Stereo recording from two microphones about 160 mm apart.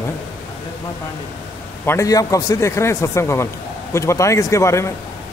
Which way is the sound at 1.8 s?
20° left (ahead or behind).